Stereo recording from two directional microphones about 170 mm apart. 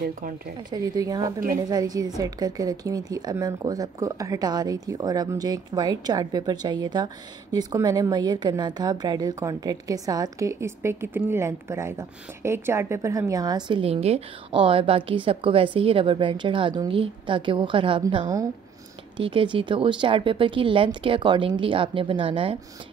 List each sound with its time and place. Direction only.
0.7 s a woman's voice: 25° right (ahead or behind)
19.1 s speech: 30° right (ahead or behind)